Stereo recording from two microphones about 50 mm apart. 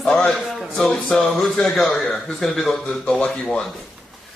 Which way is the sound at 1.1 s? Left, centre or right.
Centre.